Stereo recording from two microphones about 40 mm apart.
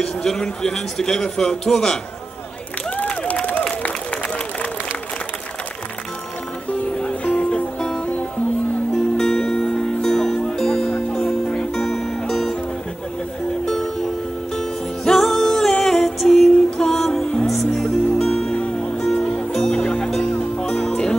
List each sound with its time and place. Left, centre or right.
0.0 s a man's voice: centre
3.3 s a sound: left
7.3 s music: left
8.9 s music: centre
15.0 s music: centre
18.5 s music: left
19.2 s music: centre